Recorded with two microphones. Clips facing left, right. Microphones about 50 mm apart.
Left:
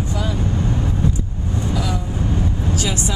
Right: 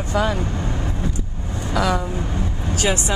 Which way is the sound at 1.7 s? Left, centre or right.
Right.